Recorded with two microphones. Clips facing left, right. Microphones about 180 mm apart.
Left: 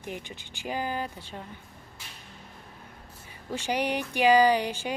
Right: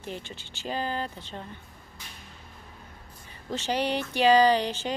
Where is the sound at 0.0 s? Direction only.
15° left (ahead or behind).